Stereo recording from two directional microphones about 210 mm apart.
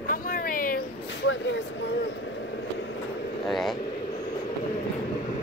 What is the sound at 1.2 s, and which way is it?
Vehicle, 60° left (ahead or behind).